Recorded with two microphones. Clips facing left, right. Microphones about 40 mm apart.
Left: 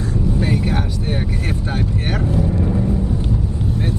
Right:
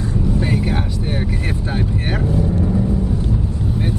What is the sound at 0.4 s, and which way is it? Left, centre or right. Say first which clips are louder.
Vehicle: left 1 dB; centre.